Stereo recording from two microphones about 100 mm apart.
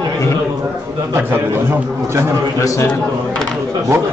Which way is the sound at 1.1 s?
20° right (ahead or behind).